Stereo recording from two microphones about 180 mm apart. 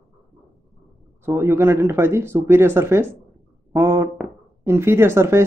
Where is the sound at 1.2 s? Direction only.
15° right (ahead or behind).